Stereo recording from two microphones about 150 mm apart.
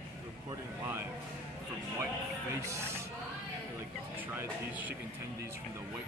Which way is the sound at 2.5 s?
20° right (ahead or behind).